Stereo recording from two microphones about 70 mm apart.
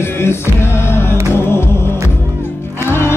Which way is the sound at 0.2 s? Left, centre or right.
Left.